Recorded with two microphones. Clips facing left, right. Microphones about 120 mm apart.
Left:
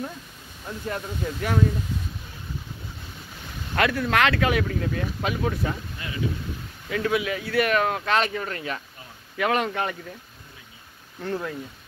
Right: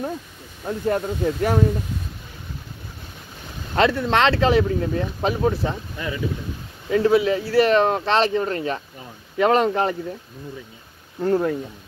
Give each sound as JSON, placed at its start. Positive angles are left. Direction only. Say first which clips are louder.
{"t": 0.7, "sound": "speech", "louder": "right 9 dB", "side_deg": -40}
{"t": 3.7, "sound": "speech", "louder": "right 4 dB", "side_deg": -25}
{"t": 6.9, "sound": "speech", "louder": "right 8 dB", "side_deg": -30}
{"t": 11.1, "sound": "speech", "louder": "right 9 dB", "side_deg": -35}